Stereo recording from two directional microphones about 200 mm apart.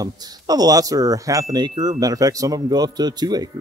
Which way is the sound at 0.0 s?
20° right (ahead or behind).